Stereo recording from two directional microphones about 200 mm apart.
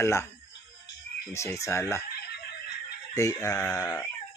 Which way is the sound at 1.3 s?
15° left (ahead or behind).